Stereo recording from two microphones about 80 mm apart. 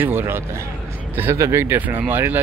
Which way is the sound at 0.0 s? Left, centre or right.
Right.